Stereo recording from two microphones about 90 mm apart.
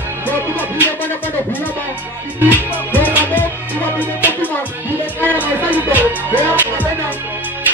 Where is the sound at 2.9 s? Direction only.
20° left (ahead or behind).